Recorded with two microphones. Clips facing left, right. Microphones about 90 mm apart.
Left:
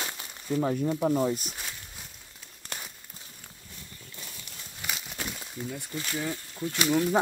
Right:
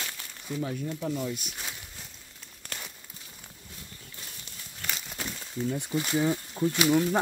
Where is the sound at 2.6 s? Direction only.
15° left (ahead or behind).